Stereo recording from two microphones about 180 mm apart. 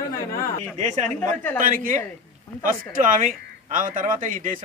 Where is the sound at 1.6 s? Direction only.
50° right (ahead or behind).